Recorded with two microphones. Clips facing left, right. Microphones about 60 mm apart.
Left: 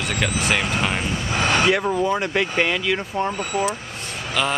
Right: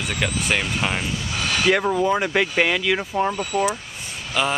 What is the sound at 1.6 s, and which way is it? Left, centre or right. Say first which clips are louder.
Speech: right 1 dB; centre.